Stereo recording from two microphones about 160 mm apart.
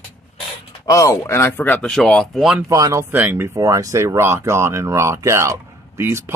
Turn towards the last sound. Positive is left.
turn(degrees=-15)  # may be behind; listen again after turning